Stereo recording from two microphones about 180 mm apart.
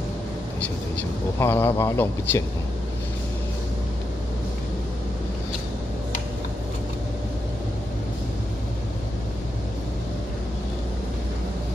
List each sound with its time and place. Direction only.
1.4 s speech: 10° left (ahead or behind)